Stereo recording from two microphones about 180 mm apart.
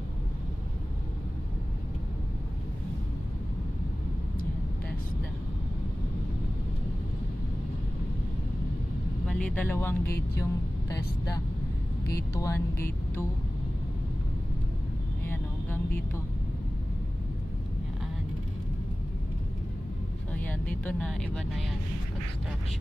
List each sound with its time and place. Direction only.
9.3 s speech: 5° left (ahead or behind)
12.1 s music: 15° left (ahead or behind)
15.2 s vehicle: 10° left (ahead or behind)
20.3 s speech: 10° left (ahead or behind)